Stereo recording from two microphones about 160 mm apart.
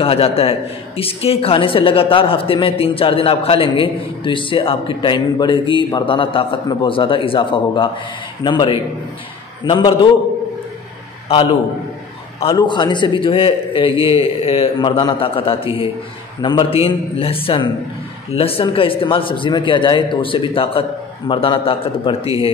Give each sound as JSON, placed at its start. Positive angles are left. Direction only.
{"t": 0.0, "sound": "a man's voice", "side_deg": 35}
{"t": 11.2, "sound": "a man's voice", "side_deg": 35}